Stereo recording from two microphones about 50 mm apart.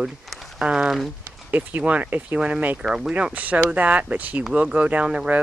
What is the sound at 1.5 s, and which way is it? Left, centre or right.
Speech, right.